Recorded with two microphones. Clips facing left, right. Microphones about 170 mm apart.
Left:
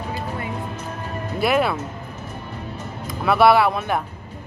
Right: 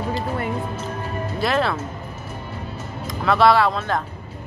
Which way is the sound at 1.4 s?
10° left (ahead or behind).